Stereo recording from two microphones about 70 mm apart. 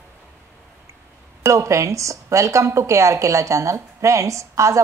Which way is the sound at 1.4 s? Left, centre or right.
Right.